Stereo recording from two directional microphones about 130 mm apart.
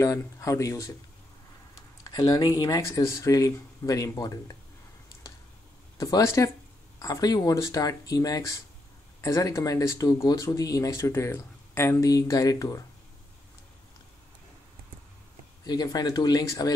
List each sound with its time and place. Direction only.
0.0 s speech: 25° left (ahead or behind)
5.9 s speech: 25° left (ahead or behind)
15.6 s speech: 30° left (ahead or behind)